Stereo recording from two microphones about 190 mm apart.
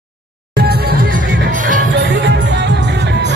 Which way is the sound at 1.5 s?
45° right (ahead or behind).